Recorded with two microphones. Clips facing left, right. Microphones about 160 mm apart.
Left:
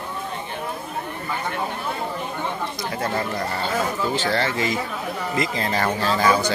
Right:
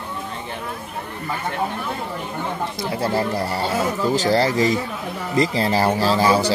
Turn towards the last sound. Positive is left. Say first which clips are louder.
# right 3 dB
turn(degrees=-30)  # may be behind; listen again after turning